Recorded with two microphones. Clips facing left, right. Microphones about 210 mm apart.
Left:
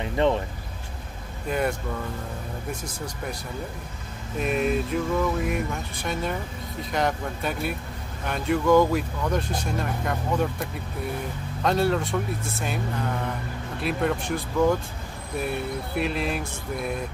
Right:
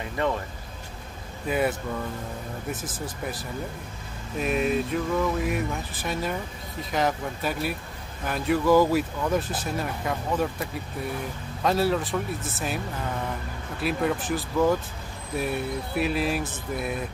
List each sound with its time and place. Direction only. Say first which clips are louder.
0.0 s music: left 4 dB; 25° left (ahead or behind)
1.5 s speech: right 1 dB; 5° right (ahead or behind)
4.4 s speech: even; centre (ahead or behind)
13.7 s speech: even; centre (ahead or behind)